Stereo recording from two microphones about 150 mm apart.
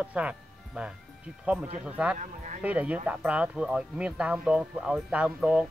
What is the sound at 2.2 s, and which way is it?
Speech, 55° right (ahead or behind).